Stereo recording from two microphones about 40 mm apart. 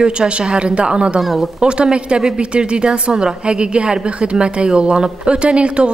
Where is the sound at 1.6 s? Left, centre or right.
Right.